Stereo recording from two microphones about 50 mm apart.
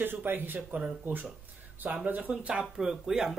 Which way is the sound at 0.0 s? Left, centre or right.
Right.